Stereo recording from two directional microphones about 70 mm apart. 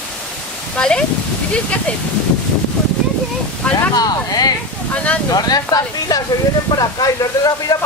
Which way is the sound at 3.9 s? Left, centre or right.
Left.